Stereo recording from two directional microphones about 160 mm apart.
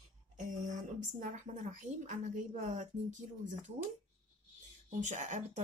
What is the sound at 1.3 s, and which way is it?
Speech, 50° right (ahead or behind).